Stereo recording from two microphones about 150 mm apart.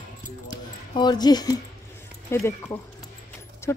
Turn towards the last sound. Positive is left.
turn(degrees=20)  # may be behind; listen again after turning